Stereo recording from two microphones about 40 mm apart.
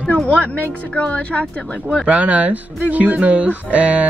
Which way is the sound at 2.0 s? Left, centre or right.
Right.